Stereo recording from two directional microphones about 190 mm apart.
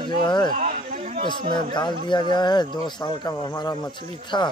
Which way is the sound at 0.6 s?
40° right (ahead or behind).